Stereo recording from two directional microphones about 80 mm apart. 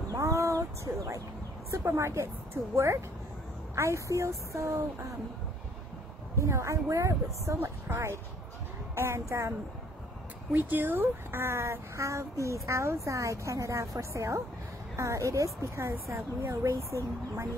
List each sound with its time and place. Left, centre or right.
0.1 s a sound: right
1.7 s speech: right
6.3 s speech: right
10.5 s speech: right